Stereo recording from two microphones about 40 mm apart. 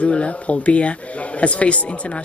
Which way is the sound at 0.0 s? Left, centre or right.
Left.